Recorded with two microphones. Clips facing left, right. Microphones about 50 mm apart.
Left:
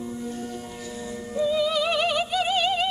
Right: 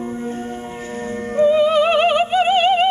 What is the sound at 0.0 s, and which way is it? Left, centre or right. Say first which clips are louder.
Music: right 7 dB; right.